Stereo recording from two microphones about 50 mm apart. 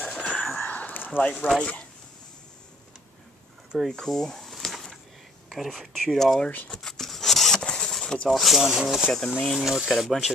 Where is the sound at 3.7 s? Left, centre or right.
Centre.